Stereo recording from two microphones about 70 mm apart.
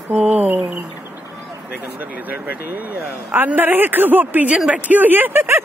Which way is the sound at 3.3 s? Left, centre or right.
Right.